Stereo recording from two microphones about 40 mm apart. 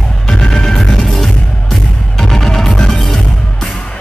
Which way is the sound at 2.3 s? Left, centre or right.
Centre.